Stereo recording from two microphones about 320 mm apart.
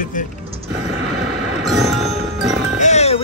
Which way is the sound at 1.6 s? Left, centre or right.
Centre.